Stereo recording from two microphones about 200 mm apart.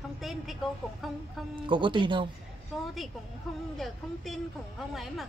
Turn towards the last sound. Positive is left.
turn(degrees=0)  # may be behind; listen again after turning